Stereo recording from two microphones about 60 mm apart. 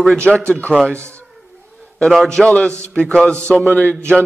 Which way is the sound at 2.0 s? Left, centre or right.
Centre.